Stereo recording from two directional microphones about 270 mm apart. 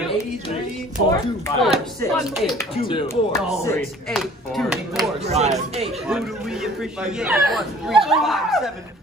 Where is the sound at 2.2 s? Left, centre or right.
Centre.